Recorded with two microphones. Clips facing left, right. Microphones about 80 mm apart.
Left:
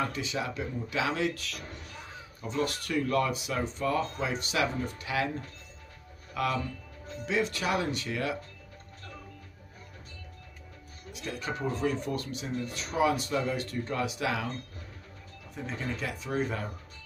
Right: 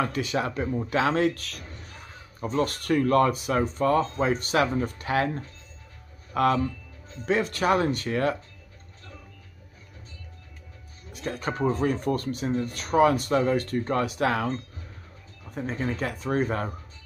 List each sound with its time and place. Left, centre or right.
0.0 s speech: right
11.1 s speech: right
15.5 s speech: right